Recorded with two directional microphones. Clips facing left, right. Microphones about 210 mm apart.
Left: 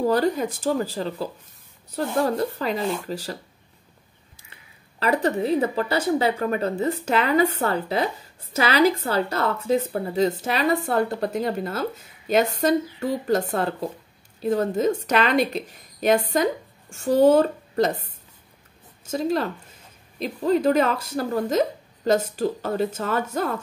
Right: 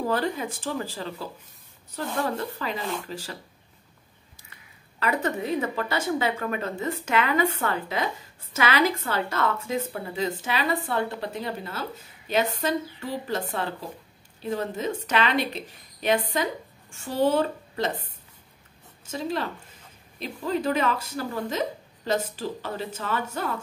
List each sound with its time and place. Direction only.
0.1 s speech: 40° left (ahead or behind)
5.0 s speech: 35° left (ahead or behind)
19.0 s speech: 40° left (ahead or behind)